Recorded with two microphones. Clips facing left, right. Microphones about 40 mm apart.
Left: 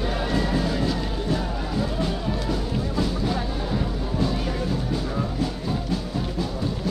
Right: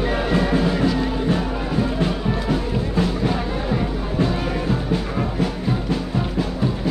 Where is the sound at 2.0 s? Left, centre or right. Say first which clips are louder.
Right 4 dB; right.